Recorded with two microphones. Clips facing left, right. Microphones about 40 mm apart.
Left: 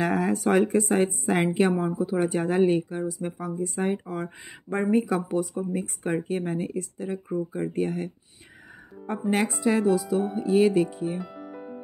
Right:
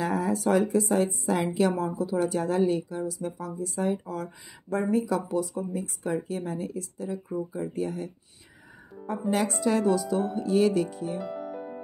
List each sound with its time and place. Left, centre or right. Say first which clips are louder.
0.0 s a woman's voice: left 2 dB; left
9.5 s speech: left 2 dB; centre
11.1 s music: right 3 dB; centre